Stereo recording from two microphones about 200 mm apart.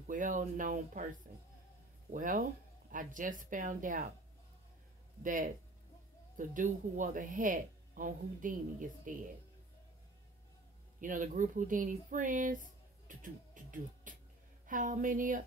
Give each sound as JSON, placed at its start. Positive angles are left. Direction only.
{"t": 0.1, "sound": "speech", "side_deg": -40}
{"t": 2.0, "sound": "speech", "side_deg": -40}
{"t": 5.2, "sound": "speech", "side_deg": -40}
{"t": 11.0, "sound": "speech", "side_deg": -40}
{"t": 13.1, "sound": "beatboxing", "side_deg": -40}
{"t": 14.7, "sound": "speech", "side_deg": -40}